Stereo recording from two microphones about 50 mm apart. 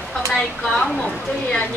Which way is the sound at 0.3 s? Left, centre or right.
Centre.